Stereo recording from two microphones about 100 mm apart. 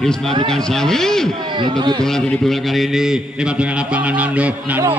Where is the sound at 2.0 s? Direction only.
5° left (ahead or behind).